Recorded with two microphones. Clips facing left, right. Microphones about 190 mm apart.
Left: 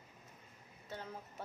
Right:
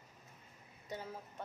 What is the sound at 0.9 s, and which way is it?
Speech, 15° right (ahead or behind).